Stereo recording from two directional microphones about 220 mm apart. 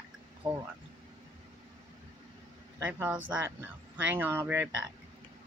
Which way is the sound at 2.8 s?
5° right (ahead or behind).